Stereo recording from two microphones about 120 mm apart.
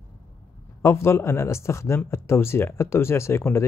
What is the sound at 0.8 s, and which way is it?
Speech, 20° left (ahead or behind).